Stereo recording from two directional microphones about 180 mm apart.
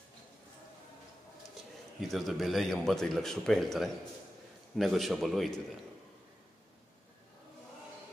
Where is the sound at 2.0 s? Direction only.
Centre (ahead or behind).